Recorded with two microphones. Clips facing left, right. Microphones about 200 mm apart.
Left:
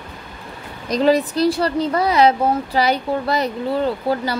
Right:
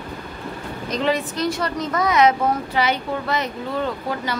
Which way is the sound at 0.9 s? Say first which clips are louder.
Left 6 dB; 35° left (ahead or behind).